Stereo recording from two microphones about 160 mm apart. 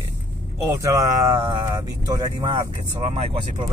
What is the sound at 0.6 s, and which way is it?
Speech, 20° right (ahead or behind).